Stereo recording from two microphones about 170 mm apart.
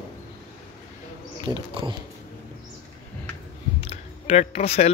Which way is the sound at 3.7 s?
40° left (ahead or behind).